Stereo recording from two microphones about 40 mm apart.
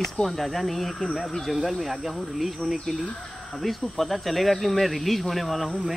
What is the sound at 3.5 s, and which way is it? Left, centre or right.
Speech, centre.